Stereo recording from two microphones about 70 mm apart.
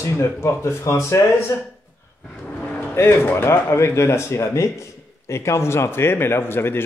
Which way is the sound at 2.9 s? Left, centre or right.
Left.